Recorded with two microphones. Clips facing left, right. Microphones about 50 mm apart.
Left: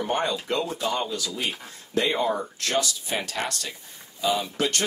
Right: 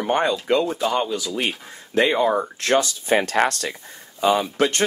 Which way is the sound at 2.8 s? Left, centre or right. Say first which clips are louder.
Right 9 dB; right.